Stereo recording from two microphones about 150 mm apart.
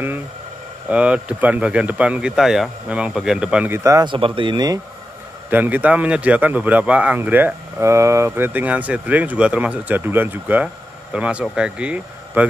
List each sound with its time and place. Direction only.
0.8 s speech: 10° right (ahead or behind)
4.1 s speech: 35° right (ahead or behind)
5.5 s speech: 10° right (ahead or behind)